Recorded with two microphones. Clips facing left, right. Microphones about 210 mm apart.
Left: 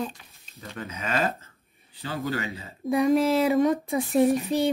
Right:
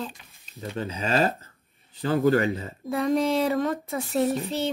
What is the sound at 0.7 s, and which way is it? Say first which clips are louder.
Speech: right 4 dB; 30° right (ahead or behind).